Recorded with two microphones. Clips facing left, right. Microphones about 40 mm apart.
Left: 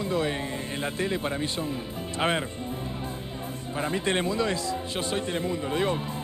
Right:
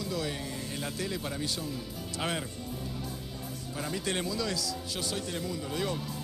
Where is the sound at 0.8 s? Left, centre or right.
Left.